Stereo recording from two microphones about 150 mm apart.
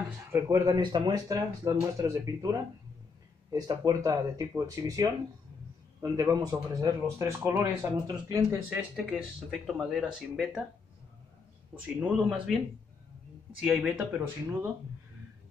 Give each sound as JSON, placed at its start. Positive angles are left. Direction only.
{"t": 0.3, "sound": "speech", "side_deg": -25}
{"t": 8.6, "sound": "speech", "side_deg": -5}
{"t": 11.8, "sound": "speech", "side_deg": -5}
{"t": 13.6, "sound": "speech", "side_deg": -5}